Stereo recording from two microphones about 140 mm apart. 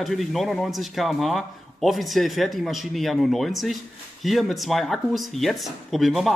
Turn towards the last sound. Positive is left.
turn(degrees=0)  # may be behind; listen again after turning